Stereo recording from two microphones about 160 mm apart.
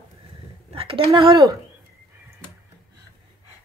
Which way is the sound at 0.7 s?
35° right (ahead or behind).